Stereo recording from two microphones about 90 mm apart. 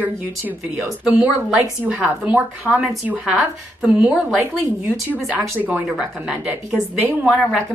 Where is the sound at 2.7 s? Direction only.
10° left (ahead or behind).